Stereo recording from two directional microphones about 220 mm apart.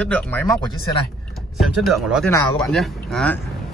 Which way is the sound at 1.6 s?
Centre (ahead or behind).